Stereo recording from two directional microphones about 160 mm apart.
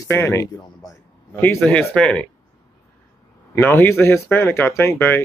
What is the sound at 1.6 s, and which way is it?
Speech, centre (ahead or behind).